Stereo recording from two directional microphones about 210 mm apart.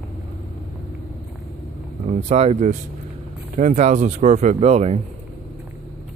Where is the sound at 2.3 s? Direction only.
30° right (ahead or behind).